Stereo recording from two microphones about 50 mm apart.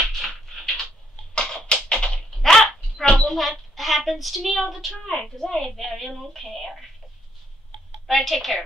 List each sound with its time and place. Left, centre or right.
0.1 s a sound: centre
1.7 s tap: left
2.3 s dog: centre
3.2 s a woman's voice: centre
8.1 s a woman's voice: centre